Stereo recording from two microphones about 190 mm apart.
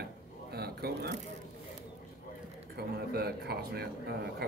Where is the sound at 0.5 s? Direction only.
55° right (ahead or behind).